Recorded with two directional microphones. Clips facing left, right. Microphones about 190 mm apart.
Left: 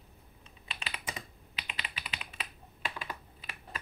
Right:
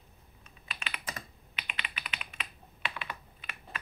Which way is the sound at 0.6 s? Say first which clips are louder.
Even; 30° left (ahead or behind).